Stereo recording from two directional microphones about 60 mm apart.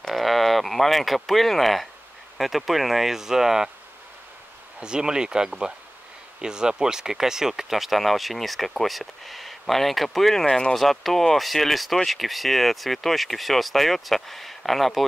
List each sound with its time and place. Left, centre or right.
0.0 s a sound: centre
2.3 s speech: centre
4.7 s speech: centre
10.4 s speech: centre
10.7 s speech: centre